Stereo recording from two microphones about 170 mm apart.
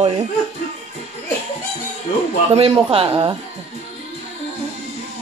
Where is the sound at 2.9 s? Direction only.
35° right (ahead or behind).